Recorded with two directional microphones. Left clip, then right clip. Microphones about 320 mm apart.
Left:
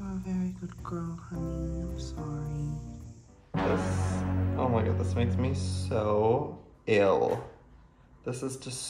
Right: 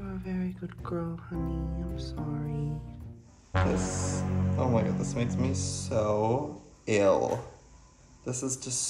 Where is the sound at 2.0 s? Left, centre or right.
Centre.